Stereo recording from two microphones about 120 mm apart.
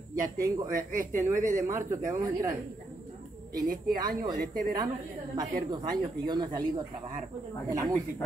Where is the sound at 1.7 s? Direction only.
20° right (ahead or behind).